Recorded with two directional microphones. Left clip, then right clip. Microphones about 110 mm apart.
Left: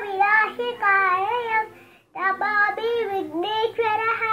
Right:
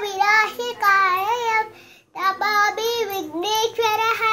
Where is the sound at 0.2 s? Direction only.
10° right (ahead or behind).